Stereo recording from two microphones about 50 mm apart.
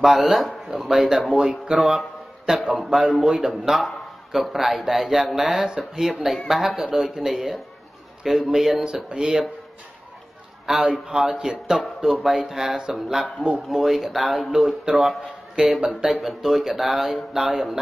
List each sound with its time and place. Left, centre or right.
0.0 s a man's voice: centre
5.7 s speech: centre
10.8 s speech: centre
15.6 s speech: centre
16.0 s speech: centre